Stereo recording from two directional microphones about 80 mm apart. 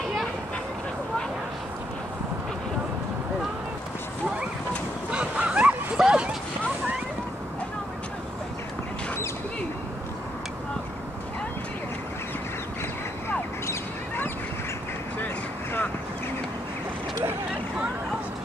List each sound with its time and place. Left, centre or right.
5.1 s dog: centre
13.7 s bird: left